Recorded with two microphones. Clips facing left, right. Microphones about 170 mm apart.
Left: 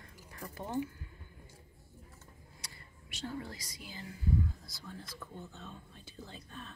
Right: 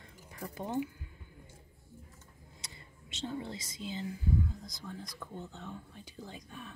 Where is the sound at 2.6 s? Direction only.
20° right (ahead or behind).